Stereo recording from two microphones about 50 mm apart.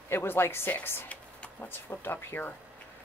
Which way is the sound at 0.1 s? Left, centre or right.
Left.